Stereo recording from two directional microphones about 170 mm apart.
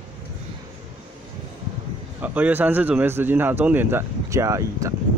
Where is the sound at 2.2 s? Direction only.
10° right (ahead or behind).